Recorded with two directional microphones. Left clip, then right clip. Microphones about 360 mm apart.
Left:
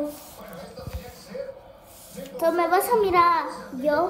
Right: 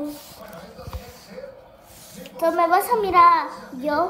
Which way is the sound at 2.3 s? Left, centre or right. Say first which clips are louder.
Right 3 dB; centre.